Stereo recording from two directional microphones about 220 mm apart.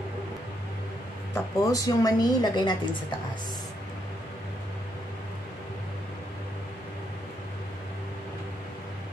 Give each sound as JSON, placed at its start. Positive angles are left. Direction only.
{"t": 1.3, "sound": "a woman's voice", "side_deg": 15}